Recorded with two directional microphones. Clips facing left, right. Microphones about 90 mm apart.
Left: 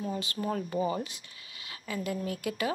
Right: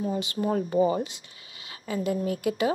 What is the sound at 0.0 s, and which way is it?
Speech, 20° right (ahead or behind).